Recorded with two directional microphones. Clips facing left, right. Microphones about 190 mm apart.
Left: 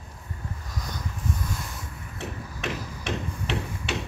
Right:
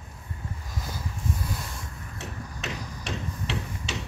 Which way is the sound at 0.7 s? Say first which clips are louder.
Even; centre (ahead or behind).